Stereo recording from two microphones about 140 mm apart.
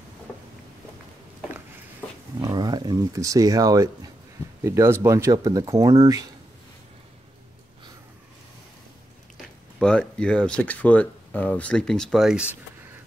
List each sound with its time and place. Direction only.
2.0 s a sound: 10° left (ahead or behind)
2.4 s speech: 30° right (ahead or behind)
9.8 s speech: 5° left (ahead or behind)